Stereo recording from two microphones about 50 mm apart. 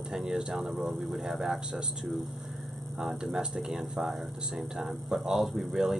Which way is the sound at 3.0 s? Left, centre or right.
Centre.